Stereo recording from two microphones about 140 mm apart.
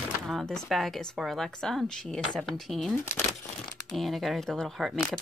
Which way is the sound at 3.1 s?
20° left (ahead or behind).